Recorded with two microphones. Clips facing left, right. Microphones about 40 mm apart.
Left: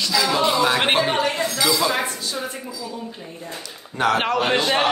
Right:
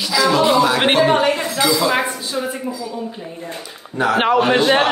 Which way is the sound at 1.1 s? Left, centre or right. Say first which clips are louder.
Right 5 dB; right.